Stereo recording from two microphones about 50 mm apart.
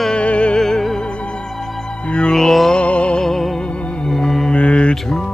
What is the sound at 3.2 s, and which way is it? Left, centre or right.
Music, centre.